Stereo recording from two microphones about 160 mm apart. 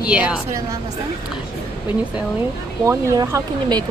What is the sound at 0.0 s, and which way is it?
Speech, 5° right (ahead or behind).